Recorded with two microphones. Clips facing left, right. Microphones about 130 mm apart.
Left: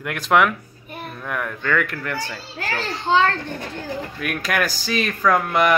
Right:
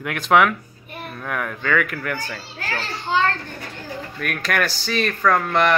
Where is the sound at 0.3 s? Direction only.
Centre (ahead or behind).